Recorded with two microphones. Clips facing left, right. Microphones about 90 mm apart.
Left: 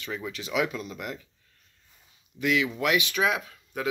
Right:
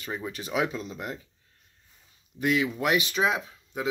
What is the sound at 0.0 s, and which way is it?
A man's voice, 35° right (ahead or behind).